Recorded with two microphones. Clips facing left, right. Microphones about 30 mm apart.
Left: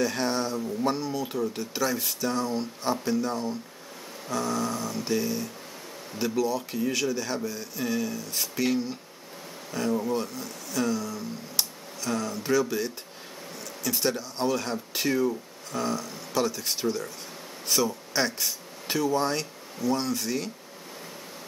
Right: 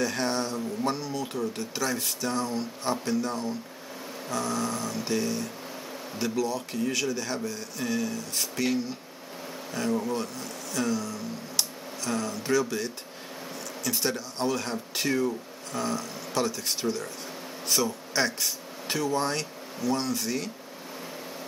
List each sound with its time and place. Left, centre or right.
0.0 s speech: centre